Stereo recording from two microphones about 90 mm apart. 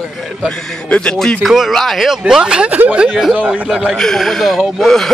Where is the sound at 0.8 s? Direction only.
15° left (ahead or behind).